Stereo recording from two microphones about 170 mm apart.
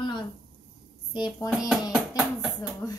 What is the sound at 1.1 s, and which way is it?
Speech, 25° left (ahead or behind).